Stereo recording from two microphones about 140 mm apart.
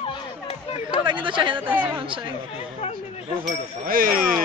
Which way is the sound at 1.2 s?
35° right (ahead or behind).